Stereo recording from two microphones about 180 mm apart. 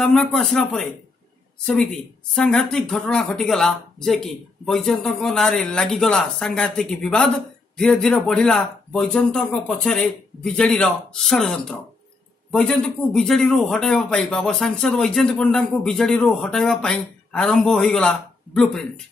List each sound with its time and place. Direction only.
0.0 s speech: 5° left (ahead or behind)